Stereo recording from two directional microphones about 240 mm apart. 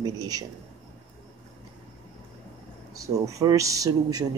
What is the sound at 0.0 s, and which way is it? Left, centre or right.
Speech, centre.